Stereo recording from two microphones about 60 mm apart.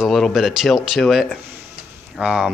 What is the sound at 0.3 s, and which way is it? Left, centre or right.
Speech, centre.